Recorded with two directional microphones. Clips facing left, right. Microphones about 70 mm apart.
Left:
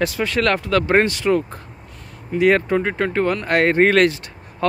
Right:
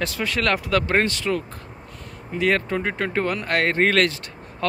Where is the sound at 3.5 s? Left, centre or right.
Centre.